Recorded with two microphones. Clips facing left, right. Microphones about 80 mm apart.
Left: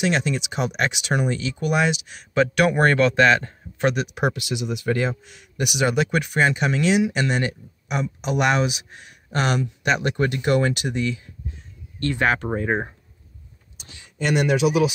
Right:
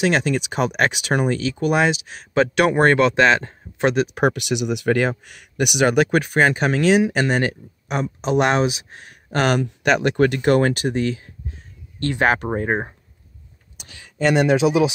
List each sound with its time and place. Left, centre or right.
0.0 s speech: right
5.6 s speech: right
6.0 s speech: right
9.3 s speech: right
14.1 s speech: right